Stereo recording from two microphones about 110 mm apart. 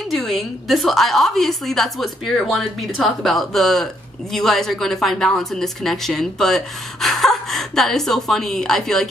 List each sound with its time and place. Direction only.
0.1 s a woman's voice: centre (ahead or behind)